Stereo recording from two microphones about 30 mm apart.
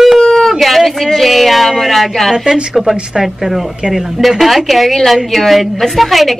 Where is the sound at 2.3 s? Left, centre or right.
Centre.